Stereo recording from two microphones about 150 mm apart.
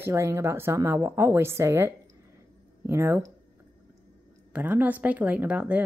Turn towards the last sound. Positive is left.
turn(degrees=-10)  # may be behind; listen again after turning